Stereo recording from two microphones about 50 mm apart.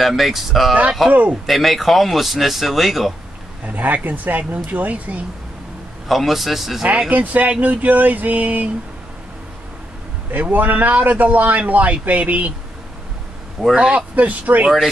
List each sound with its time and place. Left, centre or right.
0.0 s speech: centre
1.1 s a man's voice: right
1.4 s speech: centre
3.6 s a man's voice: right
6.0 s speech: centre
7.1 s a man's voice: right
10.3 s a man's voice: right
13.7 s speech: right
14.1 s a man's voice: right